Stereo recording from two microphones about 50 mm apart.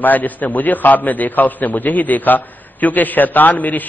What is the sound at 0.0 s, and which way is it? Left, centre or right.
A man's voice, left.